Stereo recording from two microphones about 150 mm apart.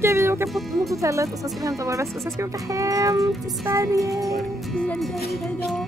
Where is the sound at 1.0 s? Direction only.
20° right (ahead or behind).